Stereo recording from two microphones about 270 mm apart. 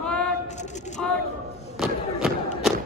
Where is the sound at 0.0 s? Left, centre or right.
Centre.